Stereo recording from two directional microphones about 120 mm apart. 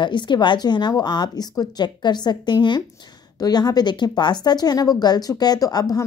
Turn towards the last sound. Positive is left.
turn(degrees=30)  # may be behind; listen again after turning